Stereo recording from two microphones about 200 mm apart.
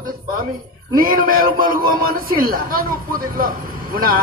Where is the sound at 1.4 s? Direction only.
45° right (ahead or behind).